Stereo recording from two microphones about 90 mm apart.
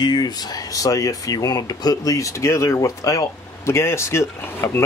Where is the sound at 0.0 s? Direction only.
50° left (ahead or behind).